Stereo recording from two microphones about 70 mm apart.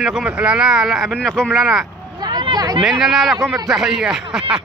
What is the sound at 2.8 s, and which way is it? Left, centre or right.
Speech, centre.